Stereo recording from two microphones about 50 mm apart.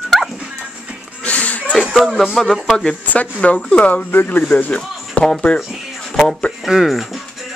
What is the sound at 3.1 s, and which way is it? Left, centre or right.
Speech, left.